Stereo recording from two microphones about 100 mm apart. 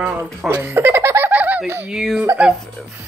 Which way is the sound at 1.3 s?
15° right (ahead or behind).